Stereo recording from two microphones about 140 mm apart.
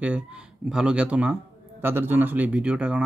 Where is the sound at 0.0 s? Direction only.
5° right (ahead or behind).